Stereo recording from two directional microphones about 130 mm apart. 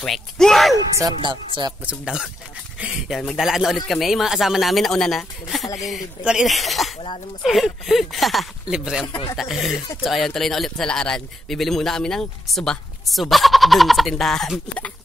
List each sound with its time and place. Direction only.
0.0 s speech: 5° left (ahead or behind)
0.7 s speech: 30° right (ahead or behind)
1.9 s speech: 5° right (ahead or behind)
9.0 s speech: 35° left (ahead or behind)
9.4 s speech: centre (ahead or behind)